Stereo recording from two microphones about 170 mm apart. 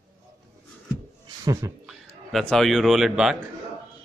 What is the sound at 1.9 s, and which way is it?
Speech, centre (ahead or behind).